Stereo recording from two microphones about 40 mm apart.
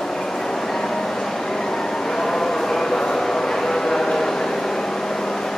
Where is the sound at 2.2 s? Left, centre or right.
Centre.